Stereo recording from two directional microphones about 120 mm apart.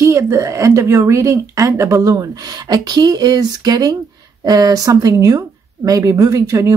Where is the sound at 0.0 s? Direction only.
25° right (ahead or behind).